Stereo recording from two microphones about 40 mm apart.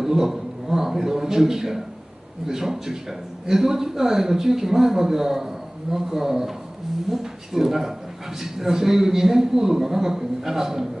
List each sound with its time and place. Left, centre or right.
0.0 s a man's voice: centre